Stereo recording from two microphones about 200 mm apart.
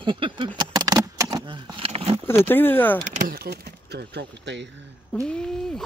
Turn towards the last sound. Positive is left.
turn(degrees=5)  # may be behind; listen again after turning